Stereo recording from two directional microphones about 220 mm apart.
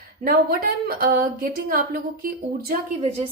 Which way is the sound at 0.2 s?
45° right (ahead or behind).